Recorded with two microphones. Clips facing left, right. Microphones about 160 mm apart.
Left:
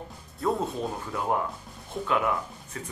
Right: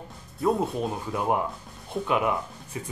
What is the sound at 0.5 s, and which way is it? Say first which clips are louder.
Speech: right 3 dB; 20° right (ahead or behind).